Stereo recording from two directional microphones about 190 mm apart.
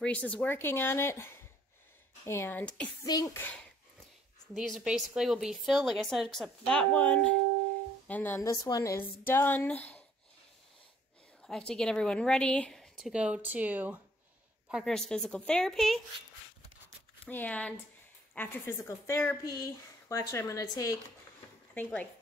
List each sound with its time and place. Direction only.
0.0 s a woman's voice: 5° left (ahead or behind)
4.6 s a woman's voice: centre (ahead or behind)
11.4 s a woman's voice: 5° left (ahead or behind)
17.2 s a woman's voice: 10° left (ahead or behind)